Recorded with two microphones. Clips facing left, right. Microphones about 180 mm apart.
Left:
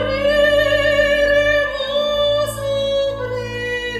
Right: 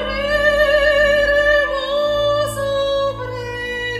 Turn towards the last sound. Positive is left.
turn(degrees=25)  # may be behind; listen again after turning